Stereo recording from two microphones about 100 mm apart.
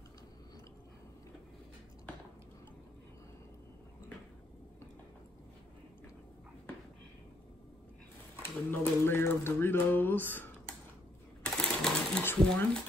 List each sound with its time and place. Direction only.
8.6 s a sound: 20° left (ahead or behind)
11.4 s typewriter: 5° left (ahead or behind)
12.2 s speech: 20° left (ahead or behind)